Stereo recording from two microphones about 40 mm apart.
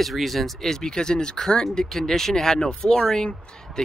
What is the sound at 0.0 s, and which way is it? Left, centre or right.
Speech, centre.